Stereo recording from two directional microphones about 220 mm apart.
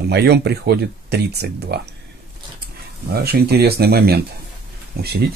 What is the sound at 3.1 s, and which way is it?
Speech, 45° right (ahead or behind).